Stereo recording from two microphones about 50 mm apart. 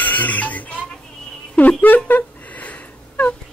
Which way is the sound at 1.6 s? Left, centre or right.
Left.